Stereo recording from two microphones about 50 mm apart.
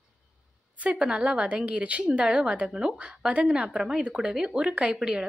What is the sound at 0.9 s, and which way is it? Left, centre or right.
A woman's voice, right.